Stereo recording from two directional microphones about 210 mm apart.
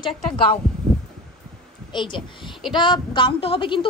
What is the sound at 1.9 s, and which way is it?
A woman's voice, 20° left (ahead or behind).